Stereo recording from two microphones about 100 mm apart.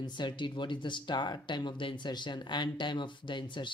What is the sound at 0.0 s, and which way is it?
Speech, 50° left (ahead or behind).